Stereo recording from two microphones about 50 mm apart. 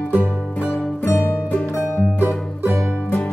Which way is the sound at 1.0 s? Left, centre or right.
Left.